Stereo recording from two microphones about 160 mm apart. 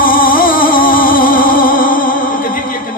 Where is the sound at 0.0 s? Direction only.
65° left (ahead or behind).